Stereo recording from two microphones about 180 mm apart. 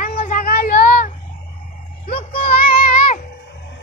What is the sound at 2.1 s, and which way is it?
Music, 30° left (ahead or behind).